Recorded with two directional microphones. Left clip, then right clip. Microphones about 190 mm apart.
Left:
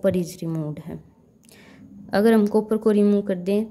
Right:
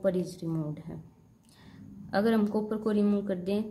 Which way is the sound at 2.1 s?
35° left (ahead or behind).